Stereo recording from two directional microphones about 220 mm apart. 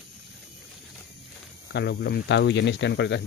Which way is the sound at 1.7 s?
45° left (ahead or behind).